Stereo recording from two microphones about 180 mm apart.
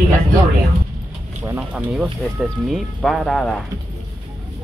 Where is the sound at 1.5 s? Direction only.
5° right (ahead or behind).